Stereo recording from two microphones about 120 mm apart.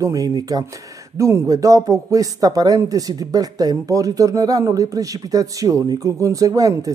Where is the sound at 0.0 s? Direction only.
30° right (ahead or behind).